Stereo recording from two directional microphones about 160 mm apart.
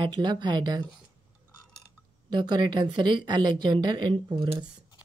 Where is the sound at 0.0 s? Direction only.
30° right (ahead or behind).